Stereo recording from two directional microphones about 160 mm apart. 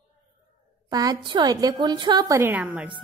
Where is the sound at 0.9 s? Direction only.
25° right (ahead or behind).